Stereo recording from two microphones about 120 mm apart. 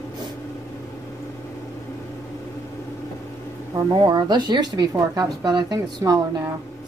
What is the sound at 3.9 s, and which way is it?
Speech, 40° right (ahead or behind).